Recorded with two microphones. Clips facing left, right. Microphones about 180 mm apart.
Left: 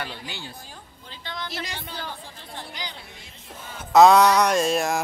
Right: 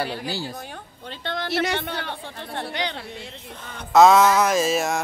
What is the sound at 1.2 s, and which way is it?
Speech, 65° right (ahead or behind).